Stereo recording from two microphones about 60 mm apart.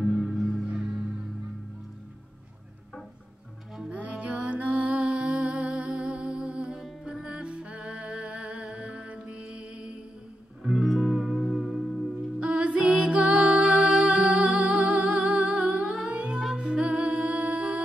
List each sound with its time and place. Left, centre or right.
0.0 s music: centre
3.9 s music: right
10.6 s music: centre
12.4 s music: centre
14.0 s humming: centre
16.5 s music: centre